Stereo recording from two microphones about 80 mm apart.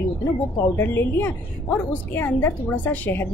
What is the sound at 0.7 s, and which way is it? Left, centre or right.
A woman's voice, left.